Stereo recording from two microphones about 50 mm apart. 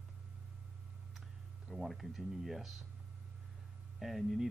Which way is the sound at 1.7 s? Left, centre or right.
Centre.